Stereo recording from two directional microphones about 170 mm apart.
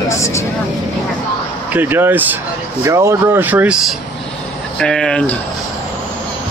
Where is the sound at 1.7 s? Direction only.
10° right (ahead or behind).